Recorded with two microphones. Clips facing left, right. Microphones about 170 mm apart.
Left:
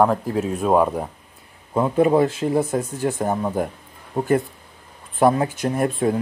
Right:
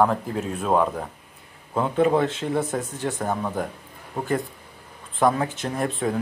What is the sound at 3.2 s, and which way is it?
Speech, 20° left (ahead or behind).